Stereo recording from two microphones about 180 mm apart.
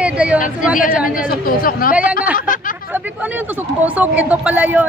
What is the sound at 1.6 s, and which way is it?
Speech, 50° left (ahead or behind).